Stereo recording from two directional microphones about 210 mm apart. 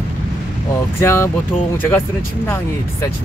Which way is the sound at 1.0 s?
10° left (ahead or behind).